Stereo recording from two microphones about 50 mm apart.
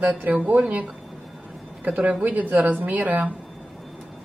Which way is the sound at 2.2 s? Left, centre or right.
Right.